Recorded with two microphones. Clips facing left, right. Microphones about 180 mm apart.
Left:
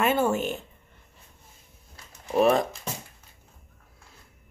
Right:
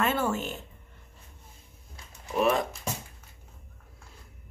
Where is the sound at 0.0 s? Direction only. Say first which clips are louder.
Left 4 dB; 15° left (ahead or behind).